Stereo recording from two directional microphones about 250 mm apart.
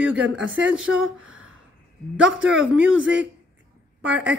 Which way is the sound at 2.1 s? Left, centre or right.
Centre.